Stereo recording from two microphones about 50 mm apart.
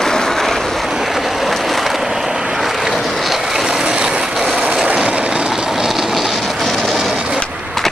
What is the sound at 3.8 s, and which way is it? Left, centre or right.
Vehicle, centre.